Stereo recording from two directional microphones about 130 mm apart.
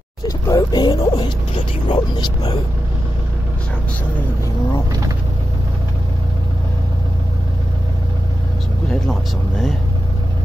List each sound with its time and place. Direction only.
0.5 s speech: 30° left (ahead or behind)
9.0 s speech: centre (ahead or behind)